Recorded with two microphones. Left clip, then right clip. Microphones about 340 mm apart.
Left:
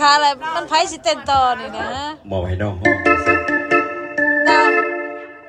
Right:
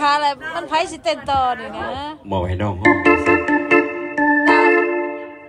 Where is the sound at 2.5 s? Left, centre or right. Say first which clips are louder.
Right 1 dB; right.